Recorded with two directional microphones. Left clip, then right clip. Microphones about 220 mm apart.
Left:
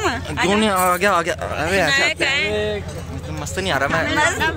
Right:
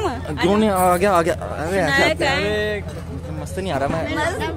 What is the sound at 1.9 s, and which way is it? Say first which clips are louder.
Speech: even; 20° right (ahead or behind).